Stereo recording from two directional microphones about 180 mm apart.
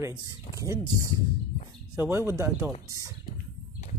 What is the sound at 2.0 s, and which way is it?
Speech, 15° right (ahead or behind).